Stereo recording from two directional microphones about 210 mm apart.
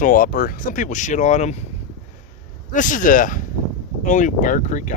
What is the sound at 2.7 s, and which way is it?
Speech, 40° left (ahead or behind).